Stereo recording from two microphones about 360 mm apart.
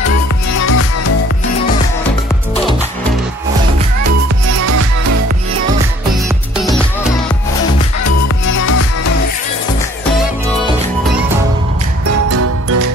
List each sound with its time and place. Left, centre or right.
0.6 s music: left
4.6 s music: right
12.3 s music: right